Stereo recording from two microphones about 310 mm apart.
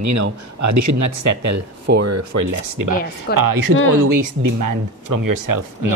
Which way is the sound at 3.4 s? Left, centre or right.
Right.